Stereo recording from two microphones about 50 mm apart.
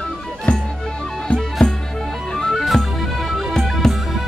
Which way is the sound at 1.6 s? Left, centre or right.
Left.